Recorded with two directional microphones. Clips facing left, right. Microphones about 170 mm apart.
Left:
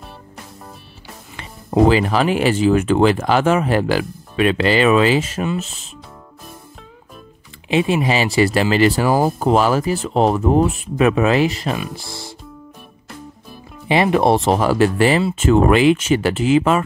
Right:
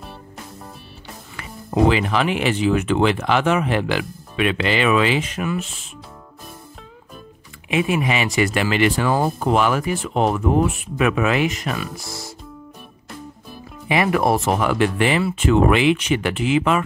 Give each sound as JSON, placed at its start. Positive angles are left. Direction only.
{"t": 1.9, "sound": "speech", "side_deg": 40}
{"t": 7.7, "sound": "speech", "side_deg": 30}
{"t": 13.8, "sound": "speech", "side_deg": 25}